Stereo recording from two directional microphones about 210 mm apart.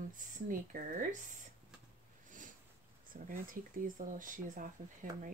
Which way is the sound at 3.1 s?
40° right (ahead or behind).